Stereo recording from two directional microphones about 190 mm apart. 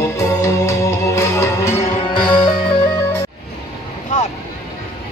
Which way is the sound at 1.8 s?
25° left (ahead or behind).